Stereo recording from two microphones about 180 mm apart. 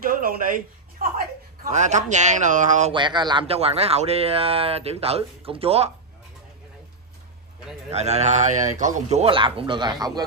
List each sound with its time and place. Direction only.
0.0 s speech: 50° right (ahead or behind)
2.9 s speech: 25° right (ahead or behind)
7.9 s speech: 35° right (ahead or behind)